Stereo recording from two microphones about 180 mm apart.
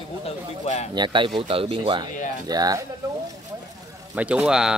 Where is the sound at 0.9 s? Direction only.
25° right (ahead or behind).